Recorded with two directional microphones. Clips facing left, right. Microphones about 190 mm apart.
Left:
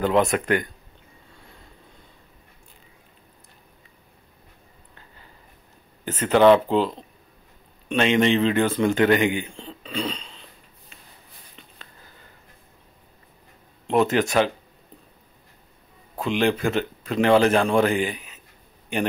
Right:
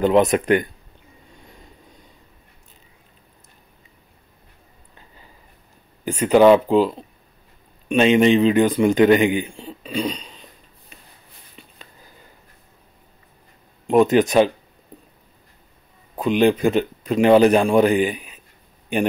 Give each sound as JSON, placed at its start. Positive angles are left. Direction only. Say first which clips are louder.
{"t": 0.0, "sound": "speech", "louder": "right 4 dB", "side_deg": -20}
{"t": 6.0, "sound": "a man's voice", "louder": "right 3 dB", "side_deg": -15}
{"t": 11.6, "sound": "a sound", "louder": "right 4 dB", "side_deg": -10}
{"t": 13.8, "sound": "a man's voice", "louder": "right 5 dB", "side_deg": -15}
{"t": 16.2, "sound": "a man's voice", "louder": "right 5 dB", "side_deg": -20}